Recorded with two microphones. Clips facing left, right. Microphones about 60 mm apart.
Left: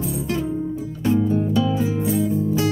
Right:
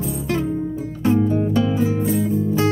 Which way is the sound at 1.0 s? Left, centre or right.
Right.